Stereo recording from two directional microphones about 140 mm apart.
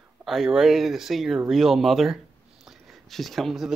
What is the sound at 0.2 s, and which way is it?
Speech, centre (ahead or behind).